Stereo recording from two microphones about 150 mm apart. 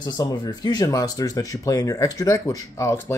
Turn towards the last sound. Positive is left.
turn(degrees=20)  # may be behind; listen again after turning